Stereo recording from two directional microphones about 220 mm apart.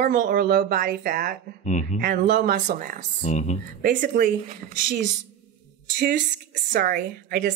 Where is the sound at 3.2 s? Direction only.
30° left (ahead or behind).